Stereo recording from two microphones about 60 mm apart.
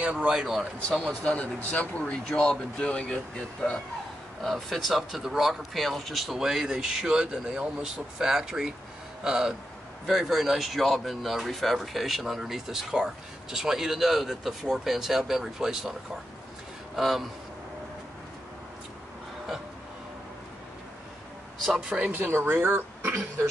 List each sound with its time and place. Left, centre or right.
0.0 s speech: right
0.4 s speech: centre
1.0 s a man's voice: left
2.2 s speech: centre
4.4 s speech: centre
16.9 s speech: centre
21.7 s speech: centre
22.1 s speech: right